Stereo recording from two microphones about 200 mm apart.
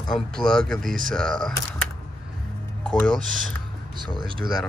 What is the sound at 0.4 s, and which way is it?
Speech, 5° left (ahead or behind).